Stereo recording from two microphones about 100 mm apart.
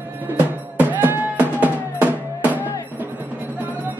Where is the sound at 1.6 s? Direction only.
15° right (ahead or behind).